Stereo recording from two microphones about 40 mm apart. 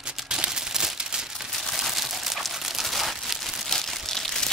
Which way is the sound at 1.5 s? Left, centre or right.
Centre.